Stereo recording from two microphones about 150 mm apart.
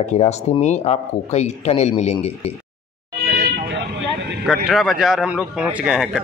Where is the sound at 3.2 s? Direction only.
90° right.